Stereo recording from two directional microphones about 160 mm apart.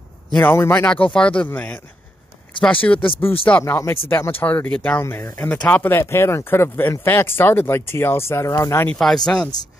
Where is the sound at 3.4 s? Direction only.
15° left (ahead or behind).